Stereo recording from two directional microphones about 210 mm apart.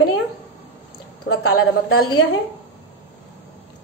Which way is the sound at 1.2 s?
90° left.